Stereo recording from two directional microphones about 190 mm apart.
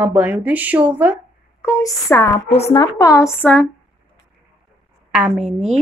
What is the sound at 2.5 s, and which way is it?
Speech, 35° left (ahead or behind).